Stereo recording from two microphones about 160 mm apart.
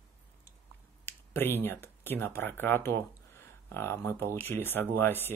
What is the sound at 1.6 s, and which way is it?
Speech, 15° left (ahead or behind).